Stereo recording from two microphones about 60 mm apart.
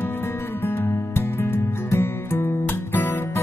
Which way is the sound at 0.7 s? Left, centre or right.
Left.